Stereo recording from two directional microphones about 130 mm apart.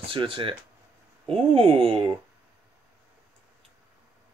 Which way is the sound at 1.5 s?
45° right (ahead or behind).